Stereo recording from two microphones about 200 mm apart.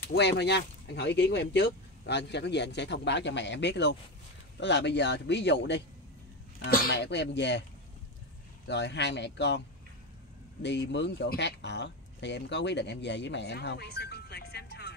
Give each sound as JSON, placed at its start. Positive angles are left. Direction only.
{"t": 0.0, "sound": "speech", "side_deg": 55}
{"t": 8.6, "sound": "speech", "side_deg": 60}
{"t": 10.6, "sound": "speech", "side_deg": 60}